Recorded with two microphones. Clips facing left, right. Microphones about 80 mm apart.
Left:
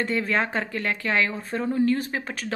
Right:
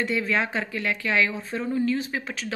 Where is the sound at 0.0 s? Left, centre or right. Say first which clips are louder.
Even; left.